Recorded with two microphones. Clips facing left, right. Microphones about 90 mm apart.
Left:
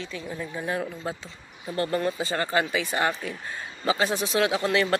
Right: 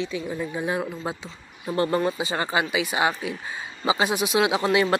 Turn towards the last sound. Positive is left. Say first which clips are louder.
# right 2 dB
turn(degrees=-15)  # may be behind; listen again after turning